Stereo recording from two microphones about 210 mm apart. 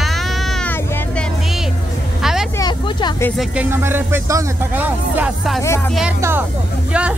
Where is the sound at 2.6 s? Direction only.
20° left (ahead or behind).